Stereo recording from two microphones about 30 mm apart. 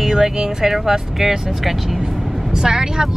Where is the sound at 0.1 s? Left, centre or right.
Centre.